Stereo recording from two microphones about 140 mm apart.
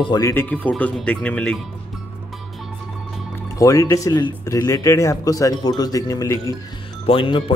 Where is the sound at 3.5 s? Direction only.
25° left (ahead or behind).